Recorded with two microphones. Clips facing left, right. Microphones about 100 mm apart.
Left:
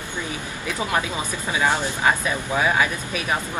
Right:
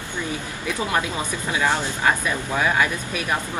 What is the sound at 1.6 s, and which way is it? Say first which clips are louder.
Speech: left 1 dB; 15° left (ahead or behind).